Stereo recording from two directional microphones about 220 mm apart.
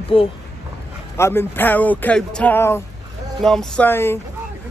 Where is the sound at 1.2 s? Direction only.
10° left (ahead or behind).